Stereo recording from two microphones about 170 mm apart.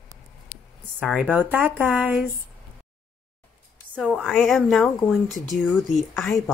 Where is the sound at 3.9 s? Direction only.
5° right (ahead or behind).